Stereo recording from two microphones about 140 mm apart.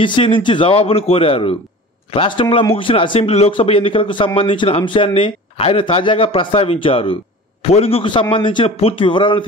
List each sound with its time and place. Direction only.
0.0 s speech: 35° left (ahead or behind)